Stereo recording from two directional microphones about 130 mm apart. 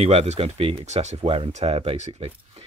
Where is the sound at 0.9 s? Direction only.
55° right (ahead or behind).